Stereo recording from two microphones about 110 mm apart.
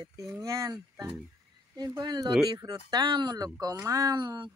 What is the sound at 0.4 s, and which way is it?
Speech, 30° right (ahead or behind).